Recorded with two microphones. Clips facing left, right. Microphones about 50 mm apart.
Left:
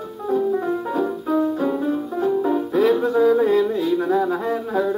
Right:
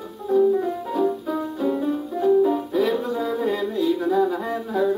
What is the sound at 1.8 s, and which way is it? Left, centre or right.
Music, left.